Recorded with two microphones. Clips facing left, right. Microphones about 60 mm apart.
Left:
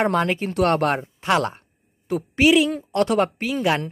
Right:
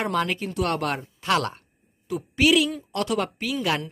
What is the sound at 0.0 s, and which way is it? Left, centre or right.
Speech, left.